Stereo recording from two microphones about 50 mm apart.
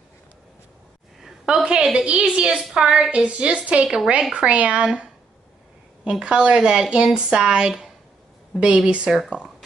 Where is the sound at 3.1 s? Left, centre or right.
Right.